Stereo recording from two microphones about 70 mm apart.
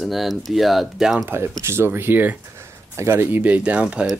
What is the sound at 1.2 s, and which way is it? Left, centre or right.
Speech, right.